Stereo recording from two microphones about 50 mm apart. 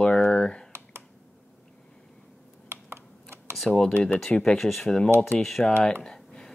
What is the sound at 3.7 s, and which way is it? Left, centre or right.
Speech, centre.